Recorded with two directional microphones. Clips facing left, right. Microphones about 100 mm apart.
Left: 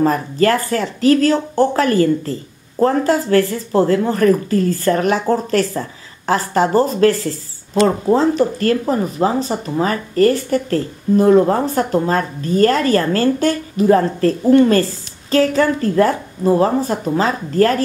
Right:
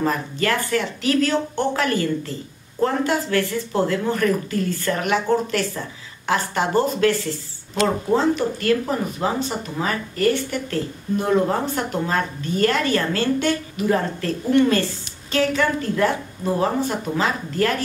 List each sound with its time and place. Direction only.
0.0 s speech: 40° left (ahead or behind)